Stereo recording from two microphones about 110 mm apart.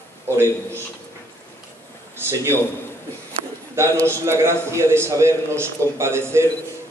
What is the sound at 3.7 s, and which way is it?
A man's voice, 25° right (ahead or behind).